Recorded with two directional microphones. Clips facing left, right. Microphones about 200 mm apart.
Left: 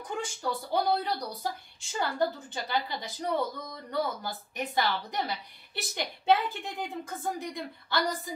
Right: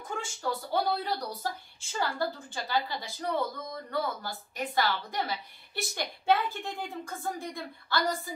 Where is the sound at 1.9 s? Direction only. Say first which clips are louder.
Left 2 dB; 15° left (ahead or behind).